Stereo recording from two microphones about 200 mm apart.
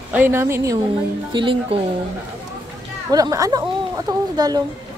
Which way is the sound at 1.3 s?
25° right (ahead or behind).